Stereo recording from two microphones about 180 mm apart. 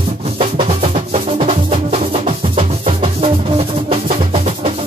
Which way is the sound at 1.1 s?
35° right (ahead or behind).